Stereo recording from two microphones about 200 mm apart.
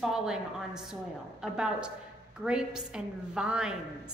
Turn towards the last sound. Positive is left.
turn(degrees=-5)  # may be behind; listen again after turning